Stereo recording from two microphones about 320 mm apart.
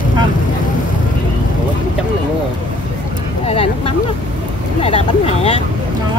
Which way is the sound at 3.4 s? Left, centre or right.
Centre.